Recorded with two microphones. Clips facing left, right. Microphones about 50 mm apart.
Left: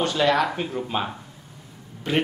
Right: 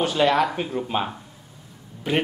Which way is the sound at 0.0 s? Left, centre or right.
Centre.